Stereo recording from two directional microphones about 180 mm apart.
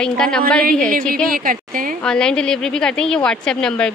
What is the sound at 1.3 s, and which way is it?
Speech, 50° right (ahead or behind).